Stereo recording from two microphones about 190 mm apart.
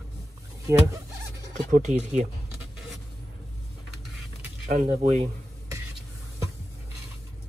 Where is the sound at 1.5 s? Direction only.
40° right (ahead or behind).